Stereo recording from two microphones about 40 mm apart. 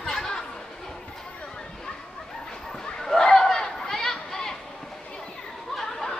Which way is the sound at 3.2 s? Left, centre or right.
Centre.